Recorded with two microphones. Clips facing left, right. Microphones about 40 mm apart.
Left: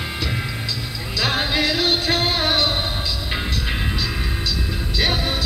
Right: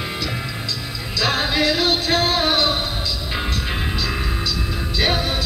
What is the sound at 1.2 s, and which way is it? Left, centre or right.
Music, centre.